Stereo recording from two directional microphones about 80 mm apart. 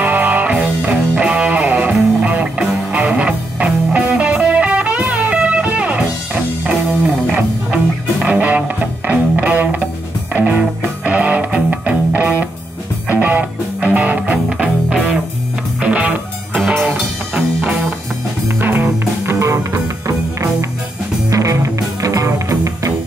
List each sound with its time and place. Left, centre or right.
0.0 s music: right
7.3 s music: centre; by 19.3 s right
19.3 s music: right